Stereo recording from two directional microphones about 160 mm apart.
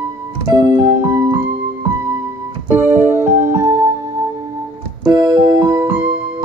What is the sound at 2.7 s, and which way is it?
Keyboard, 10° right (ahead or behind).